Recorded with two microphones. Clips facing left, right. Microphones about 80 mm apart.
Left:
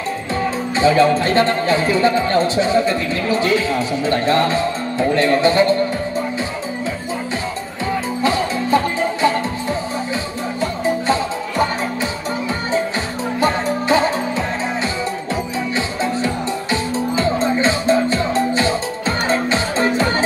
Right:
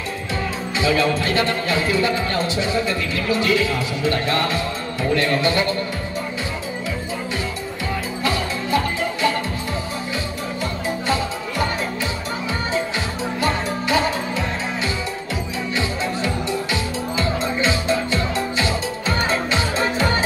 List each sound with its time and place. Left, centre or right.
0.7 s speech: left
8.2 s music: left
13.4 s music: left
15.7 s music: left